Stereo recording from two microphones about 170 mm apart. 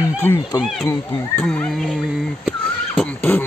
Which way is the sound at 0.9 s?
10° left (ahead or behind).